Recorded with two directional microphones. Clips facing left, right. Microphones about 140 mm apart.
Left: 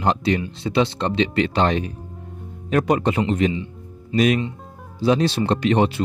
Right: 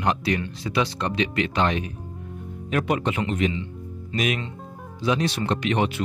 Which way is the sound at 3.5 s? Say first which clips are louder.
Left 2 dB; 15° left (ahead or behind).